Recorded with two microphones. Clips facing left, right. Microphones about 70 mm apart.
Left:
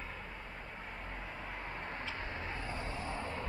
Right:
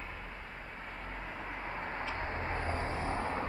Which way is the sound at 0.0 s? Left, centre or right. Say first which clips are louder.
Right 1 dB; centre.